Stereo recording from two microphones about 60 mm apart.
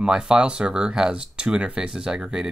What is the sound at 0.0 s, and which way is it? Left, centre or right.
Speech, centre.